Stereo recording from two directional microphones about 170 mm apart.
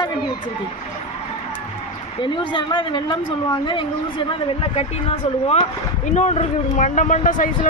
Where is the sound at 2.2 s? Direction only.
30° left (ahead or behind).